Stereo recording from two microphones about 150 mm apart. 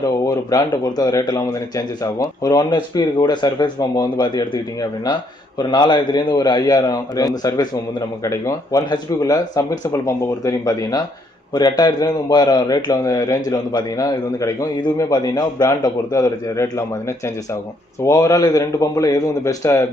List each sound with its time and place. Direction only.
0.0 s a man's voice: 25° left (ahead or behind)
5.6 s a man's voice: 30° left (ahead or behind)
18.0 s a man's voice: 20° left (ahead or behind)